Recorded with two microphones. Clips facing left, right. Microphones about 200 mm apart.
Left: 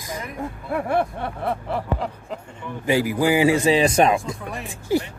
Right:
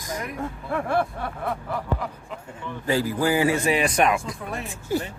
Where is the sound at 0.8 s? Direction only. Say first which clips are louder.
Left 2 dB; 25° left (ahead or behind).